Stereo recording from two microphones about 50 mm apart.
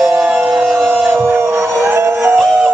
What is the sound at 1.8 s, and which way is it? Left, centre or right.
Music, right.